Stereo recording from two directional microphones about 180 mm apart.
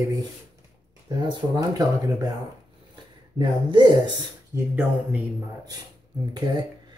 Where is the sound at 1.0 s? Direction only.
25° right (ahead or behind).